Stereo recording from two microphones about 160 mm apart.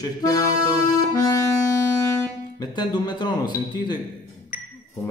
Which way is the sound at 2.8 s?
25° left (ahead or behind).